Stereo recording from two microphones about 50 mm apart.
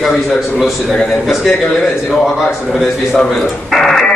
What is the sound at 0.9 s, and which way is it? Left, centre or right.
Speech, centre.